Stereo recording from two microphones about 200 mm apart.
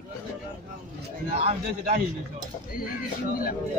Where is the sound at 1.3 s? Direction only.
30° right (ahead or behind).